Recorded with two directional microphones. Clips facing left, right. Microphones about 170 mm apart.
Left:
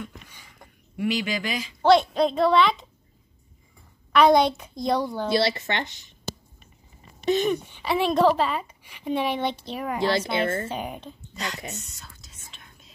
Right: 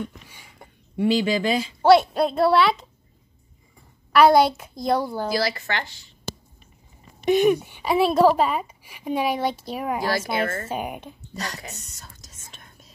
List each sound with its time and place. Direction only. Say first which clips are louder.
0.3 s a sound: right 3 dB; 10° right (ahead or behind)
0.9 s speech: right 6 dB; 30° right (ahead or behind)
1.8 s a woman's voice: right 2 dB; 5° right (ahead or behind)
4.1 s a child's voice: right 2 dB; 5° right (ahead or behind)
5.3 s speech: left 4 dB; 25° left (ahead or behind)
7.2 s a woman's voice: right 5 dB; 10° right (ahead or behind)
10.0 s speech: left 4 dB; 25° left (ahead or behind)
10.7 s a woman's voice: right 3 dB; 10° right (ahead or behind)
12.4 s whispering: right 2 dB; 45° right (ahead or behind)